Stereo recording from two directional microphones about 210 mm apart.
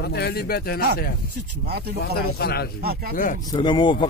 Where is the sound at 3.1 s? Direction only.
40° left (ahead or behind).